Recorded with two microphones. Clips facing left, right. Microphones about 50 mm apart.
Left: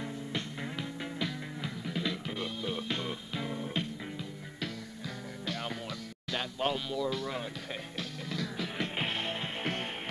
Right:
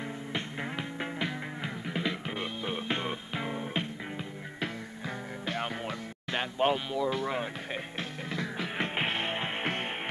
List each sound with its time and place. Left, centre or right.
0.3 s music: right